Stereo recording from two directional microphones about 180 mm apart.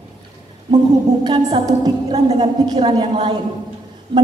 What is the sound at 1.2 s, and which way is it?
A woman's voice, 25° right (ahead or behind).